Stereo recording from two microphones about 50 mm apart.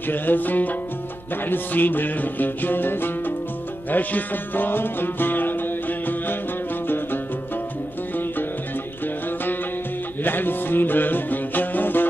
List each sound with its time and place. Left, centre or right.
0.1 s music: left
9.0 s music: left